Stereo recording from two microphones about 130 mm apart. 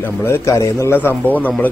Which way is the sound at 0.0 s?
20° left (ahead or behind).